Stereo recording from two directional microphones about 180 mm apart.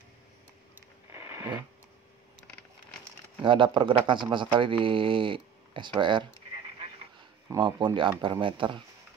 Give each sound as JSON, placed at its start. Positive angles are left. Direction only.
{"t": 1.1, "sound": "a sound", "side_deg": -15}
{"t": 3.4, "sound": "speech", "side_deg": -25}
{"t": 7.4, "sound": "speech", "side_deg": -25}